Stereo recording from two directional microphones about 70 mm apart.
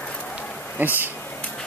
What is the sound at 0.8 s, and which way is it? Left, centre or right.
Speech, right.